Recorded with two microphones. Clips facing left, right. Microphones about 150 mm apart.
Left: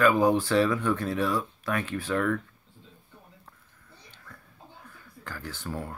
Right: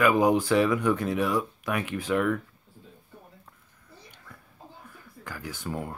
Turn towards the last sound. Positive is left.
turn(degrees=-15)  # may be behind; listen again after turning